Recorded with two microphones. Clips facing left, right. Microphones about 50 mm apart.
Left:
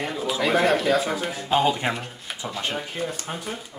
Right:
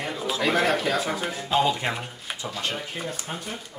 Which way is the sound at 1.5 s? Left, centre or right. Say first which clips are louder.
Left 2 dB; centre.